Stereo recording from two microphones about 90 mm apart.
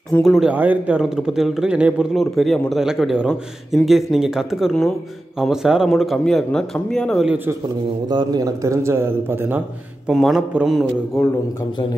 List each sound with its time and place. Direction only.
0.2 s speech: centre (ahead or behind)
0.5 s a man's voice: 15° right (ahead or behind)
2.1 s speech: centre (ahead or behind)
8.1 s a man's voice: 50° right (ahead or behind); by 9.6 s 25° right (ahead or behind)
10.0 s speech: centre (ahead or behind)